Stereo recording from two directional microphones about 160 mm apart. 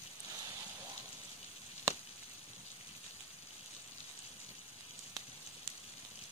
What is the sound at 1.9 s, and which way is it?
Chop, 15° right (ahead or behind).